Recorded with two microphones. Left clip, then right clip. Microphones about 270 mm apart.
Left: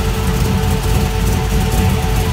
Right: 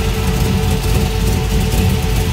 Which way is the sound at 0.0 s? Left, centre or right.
Centre.